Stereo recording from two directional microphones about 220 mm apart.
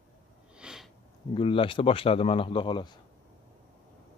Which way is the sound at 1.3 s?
25° left (ahead or behind).